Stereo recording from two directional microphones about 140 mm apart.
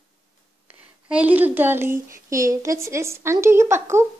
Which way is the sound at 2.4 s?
20° right (ahead or behind).